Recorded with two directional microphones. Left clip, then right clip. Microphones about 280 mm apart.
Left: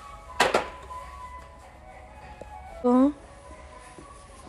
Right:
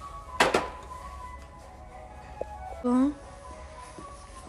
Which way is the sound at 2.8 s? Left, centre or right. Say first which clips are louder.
Left 5 dB; centre.